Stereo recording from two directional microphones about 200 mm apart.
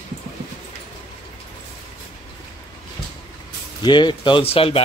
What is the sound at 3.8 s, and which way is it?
Speech, 25° left (ahead or behind).